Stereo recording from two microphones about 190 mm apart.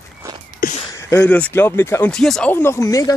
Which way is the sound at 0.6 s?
50° left (ahead or behind).